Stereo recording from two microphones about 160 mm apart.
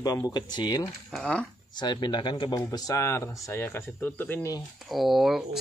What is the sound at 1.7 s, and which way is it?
Speech, 25° left (ahead or behind).